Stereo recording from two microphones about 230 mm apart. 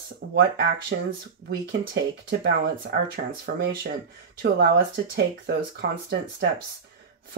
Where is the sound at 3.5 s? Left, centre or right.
Right.